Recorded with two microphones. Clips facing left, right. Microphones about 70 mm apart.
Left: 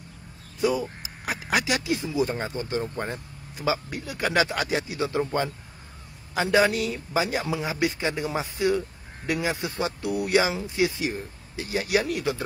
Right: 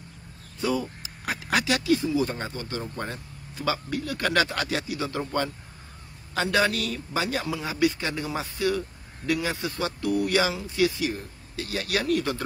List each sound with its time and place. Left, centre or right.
0.6 s a sound: centre
2.0 s a man's voice: left
12.0 s speech: centre